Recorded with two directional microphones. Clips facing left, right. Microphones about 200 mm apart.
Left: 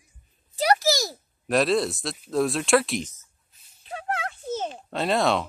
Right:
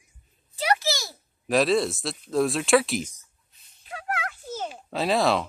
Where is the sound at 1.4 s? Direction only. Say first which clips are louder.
Even; centre (ahead or behind).